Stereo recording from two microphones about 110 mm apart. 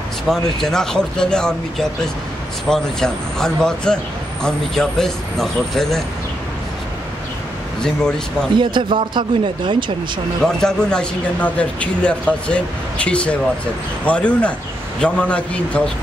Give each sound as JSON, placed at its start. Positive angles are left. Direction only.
{"t": 0.3, "sound": "a man's voice", "side_deg": 5}
{"t": 7.8, "sound": "a man's voice", "side_deg": 5}
{"t": 8.5, "sound": "a man's voice", "side_deg": -45}
{"t": 10.4, "sound": "speech", "side_deg": 5}